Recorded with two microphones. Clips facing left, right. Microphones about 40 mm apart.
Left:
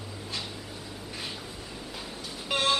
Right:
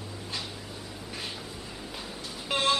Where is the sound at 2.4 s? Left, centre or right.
Centre.